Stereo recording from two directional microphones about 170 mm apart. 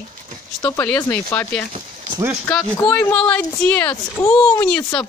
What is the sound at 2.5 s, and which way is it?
A woman's voice, 15° left (ahead or behind).